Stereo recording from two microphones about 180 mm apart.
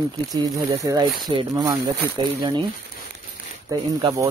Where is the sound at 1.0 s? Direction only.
Centre (ahead or behind).